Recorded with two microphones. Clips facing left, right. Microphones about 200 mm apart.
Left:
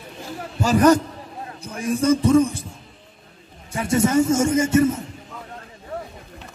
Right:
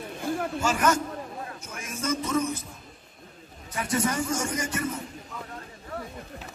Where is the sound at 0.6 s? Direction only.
35° left (ahead or behind).